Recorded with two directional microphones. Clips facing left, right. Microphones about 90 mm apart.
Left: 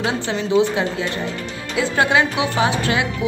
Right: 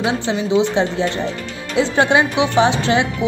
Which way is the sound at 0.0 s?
20° right (ahead or behind).